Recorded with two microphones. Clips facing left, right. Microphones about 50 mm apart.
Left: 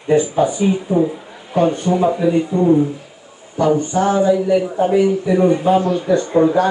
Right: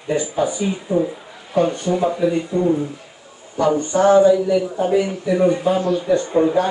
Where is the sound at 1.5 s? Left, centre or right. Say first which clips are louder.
Left 2 dB; centre.